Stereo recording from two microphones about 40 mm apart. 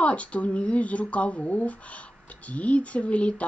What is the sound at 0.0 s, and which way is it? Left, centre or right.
A woman's voice, left.